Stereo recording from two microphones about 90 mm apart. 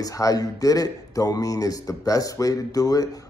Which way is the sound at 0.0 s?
40° left (ahead or behind).